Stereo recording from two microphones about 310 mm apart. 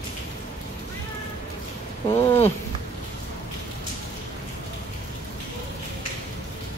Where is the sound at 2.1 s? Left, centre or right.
Centre.